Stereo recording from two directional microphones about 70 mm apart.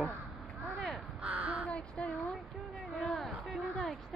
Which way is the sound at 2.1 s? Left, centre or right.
Centre.